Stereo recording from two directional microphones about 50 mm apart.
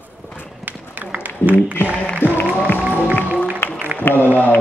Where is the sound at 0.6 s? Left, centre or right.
Right.